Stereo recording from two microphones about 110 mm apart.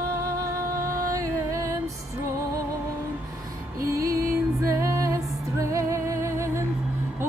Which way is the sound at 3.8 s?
30° right (ahead or behind).